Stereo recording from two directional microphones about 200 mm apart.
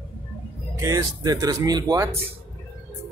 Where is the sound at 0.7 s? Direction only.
15° right (ahead or behind).